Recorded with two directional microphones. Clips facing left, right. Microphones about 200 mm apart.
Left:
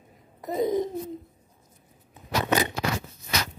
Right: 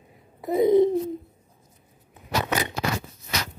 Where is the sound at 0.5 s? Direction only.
15° right (ahead or behind).